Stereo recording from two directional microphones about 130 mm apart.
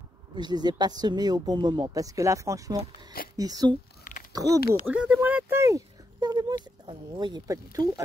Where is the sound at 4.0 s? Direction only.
90° left.